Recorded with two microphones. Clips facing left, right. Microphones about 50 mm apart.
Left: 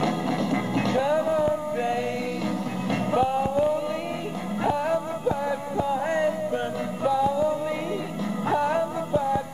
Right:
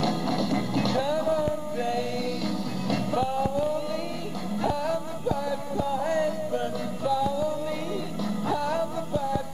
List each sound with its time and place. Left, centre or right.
0.0 s music: left